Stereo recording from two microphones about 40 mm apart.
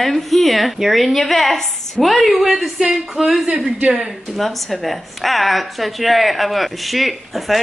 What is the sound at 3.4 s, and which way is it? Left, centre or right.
Speech, right.